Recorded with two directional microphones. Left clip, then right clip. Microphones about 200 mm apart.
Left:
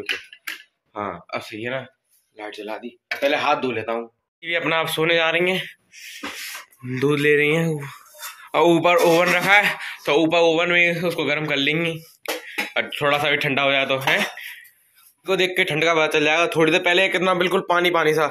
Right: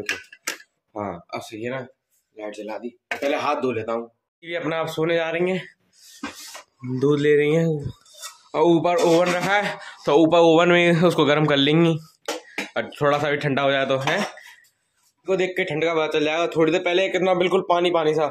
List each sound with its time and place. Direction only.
0.9 s speech: 5° left (ahead or behind)
4.4 s a man's voice: 15° right (ahead or behind)
7.0 s a man's voice: 15° right (ahead or behind); by 14.2 s 30° right (ahead or behind)
15.2 s a man's voice: 10° right (ahead or behind)